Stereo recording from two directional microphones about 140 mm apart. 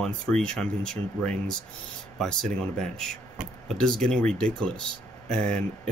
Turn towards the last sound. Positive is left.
turn(degrees=5)  # may be behind; listen again after turning